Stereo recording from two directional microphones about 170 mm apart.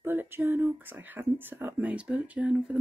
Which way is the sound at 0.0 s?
15° right (ahead or behind).